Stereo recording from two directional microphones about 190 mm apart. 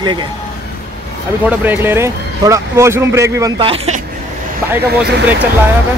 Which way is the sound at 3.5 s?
30° right (ahead or behind).